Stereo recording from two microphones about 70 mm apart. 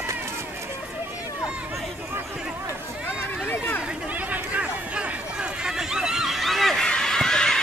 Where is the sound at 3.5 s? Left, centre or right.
Left.